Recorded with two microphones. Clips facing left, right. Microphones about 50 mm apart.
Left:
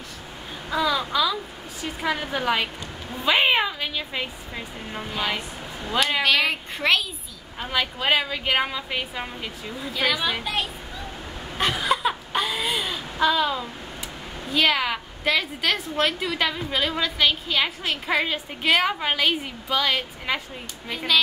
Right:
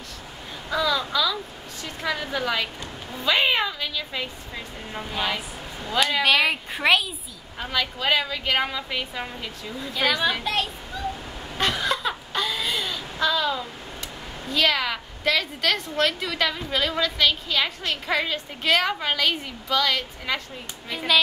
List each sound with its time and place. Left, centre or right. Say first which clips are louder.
0.7 s a woman's voice: even; centre
4.9 s a woman's voice: even; centre
7.7 s a woman's voice: left 1 dB; centre
11.5 s a sound: left 1 dB; centre
14.5 s a woman's voice: left 1 dB; centre